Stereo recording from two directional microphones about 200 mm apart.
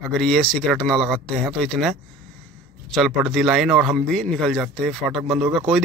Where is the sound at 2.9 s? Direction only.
Centre (ahead or behind).